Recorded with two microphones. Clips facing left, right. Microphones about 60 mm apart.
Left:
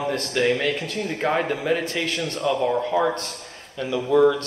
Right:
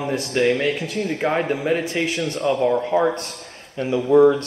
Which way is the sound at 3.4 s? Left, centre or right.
Right.